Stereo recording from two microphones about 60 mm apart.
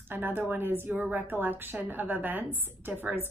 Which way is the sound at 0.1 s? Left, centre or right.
Right.